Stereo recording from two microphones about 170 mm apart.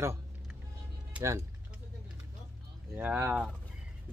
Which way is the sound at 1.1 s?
15° right (ahead or behind).